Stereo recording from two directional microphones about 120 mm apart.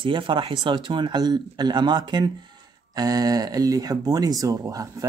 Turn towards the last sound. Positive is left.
turn(degrees=-30)  # may be behind; listen again after turning